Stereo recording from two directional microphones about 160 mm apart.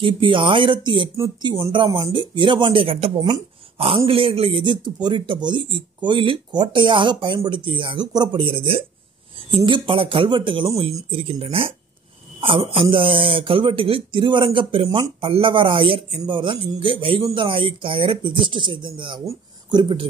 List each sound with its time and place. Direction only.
0.0 s speech: 30° right (ahead or behind)